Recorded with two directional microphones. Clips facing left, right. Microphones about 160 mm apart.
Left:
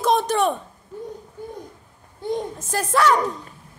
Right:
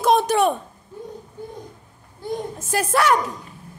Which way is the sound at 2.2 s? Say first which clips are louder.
Left 2 dB; 25° left (ahead or behind).